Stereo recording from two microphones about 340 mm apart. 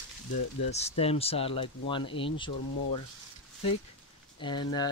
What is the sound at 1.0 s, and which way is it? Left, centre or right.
Speech, centre.